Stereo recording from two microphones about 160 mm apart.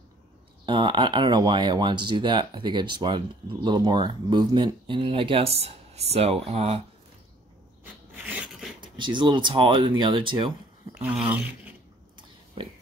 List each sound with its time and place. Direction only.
0.7 s speech: 30° right (ahead or behind)
7.8 s filing: 10° right (ahead or behind)
8.8 s speech: 30° right (ahead or behind)
11.0 s speech: 10° right (ahead or behind)